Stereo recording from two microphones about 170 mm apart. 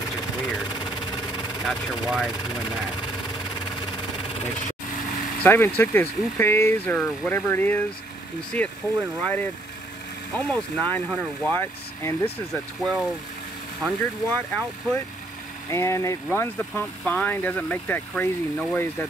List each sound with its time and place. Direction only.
1.6 s speech: centre (ahead or behind)
5.4 s speech: 10° left (ahead or behind)
12.5 s speech: centre (ahead or behind)
15.7 s speech: 15° left (ahead or behind)